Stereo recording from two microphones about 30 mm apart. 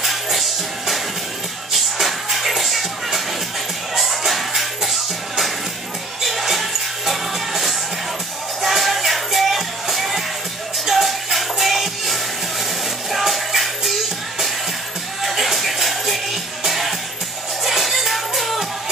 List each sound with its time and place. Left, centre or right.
0.0 s music: centre
6.5 s music: centre
15.2 s music: centre